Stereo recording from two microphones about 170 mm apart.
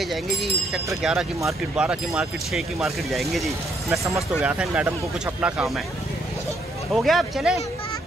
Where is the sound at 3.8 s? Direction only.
20° right (ahead or behind).